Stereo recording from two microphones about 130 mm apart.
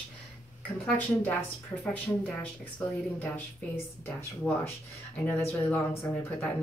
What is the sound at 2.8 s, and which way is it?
Speech, 10° left (ahead or behind).